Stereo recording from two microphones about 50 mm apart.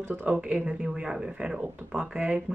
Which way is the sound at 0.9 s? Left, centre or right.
Centre.